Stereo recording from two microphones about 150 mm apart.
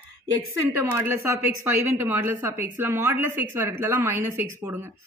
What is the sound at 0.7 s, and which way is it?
A woman's voice, 15° right (ahead or behind).